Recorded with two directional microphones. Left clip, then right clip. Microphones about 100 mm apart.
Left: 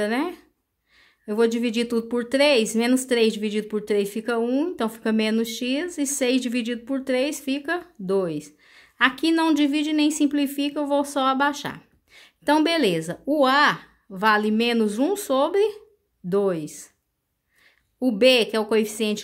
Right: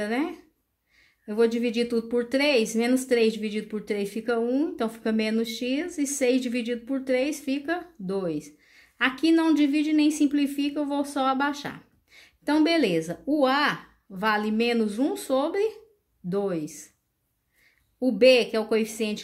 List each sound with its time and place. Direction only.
0.0 s speech: 40° left (ahead or behind)
17.9 s speech: 40° left (ahead or behind)